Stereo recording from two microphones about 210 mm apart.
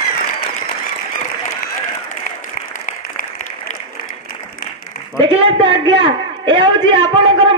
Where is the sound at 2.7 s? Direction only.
40° left (ahead or behind).